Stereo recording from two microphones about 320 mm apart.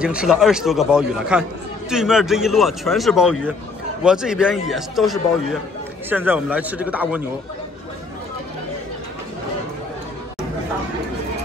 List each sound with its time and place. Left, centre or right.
0.0 s speech: centre